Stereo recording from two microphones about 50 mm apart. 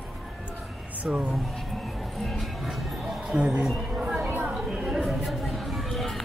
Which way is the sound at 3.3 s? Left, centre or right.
Centre.